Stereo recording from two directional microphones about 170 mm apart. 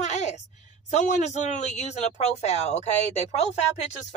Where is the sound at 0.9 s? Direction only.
45° left (ahead or behind).